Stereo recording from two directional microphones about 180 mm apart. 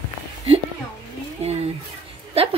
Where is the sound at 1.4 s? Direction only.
35° right (ahead or behind).